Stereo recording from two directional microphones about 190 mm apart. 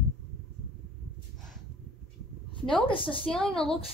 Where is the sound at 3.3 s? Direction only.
5° left (ahead or behind).